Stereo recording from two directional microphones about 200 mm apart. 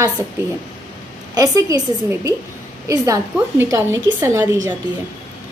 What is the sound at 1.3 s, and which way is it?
A woman's voice, 15° right (ahead or behind).